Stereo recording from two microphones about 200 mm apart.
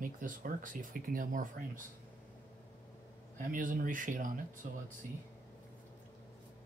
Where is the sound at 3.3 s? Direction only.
40° right (ahead or behind).